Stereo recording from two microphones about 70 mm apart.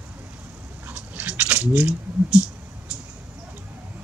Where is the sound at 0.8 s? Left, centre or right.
Right.